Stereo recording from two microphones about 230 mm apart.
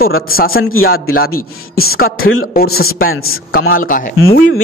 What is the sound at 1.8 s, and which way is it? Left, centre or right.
Speech, left.